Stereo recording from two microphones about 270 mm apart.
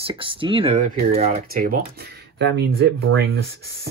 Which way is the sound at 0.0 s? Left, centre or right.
Centre.